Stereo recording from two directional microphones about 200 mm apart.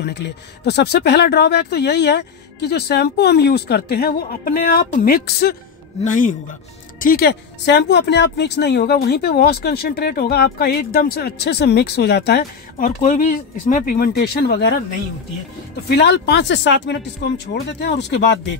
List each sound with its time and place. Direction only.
0.0 s speech: 55° left (ahead or behind)
6.0 s speech: 40° left (ahead or behind)
15.9 s speech: 55° left (ahead or behind)